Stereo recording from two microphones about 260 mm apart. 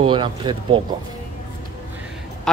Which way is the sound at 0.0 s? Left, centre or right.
Centre.